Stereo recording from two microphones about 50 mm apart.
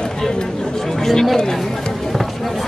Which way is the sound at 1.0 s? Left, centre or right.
Centre.